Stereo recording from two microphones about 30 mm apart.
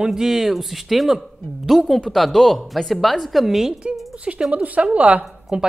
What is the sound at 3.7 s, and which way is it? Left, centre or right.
Speech, right.